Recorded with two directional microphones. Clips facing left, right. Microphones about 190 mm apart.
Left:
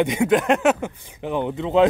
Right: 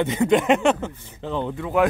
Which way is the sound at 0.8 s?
15° left (ahead or behind).